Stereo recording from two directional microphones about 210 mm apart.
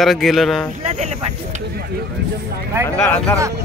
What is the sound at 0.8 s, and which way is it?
Speech, 30° right (ahead or behind).